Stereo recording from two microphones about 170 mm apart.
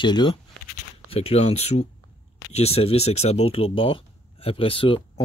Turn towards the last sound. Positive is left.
turn(degrees=30)  # may be behind; listen again after turning